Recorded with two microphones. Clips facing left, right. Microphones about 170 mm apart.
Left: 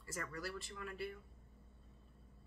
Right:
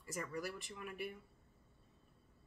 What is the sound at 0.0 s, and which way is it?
Speech, 15° right (ahead or behind).